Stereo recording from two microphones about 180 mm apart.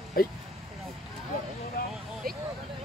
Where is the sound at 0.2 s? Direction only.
55° left (ahead or behind).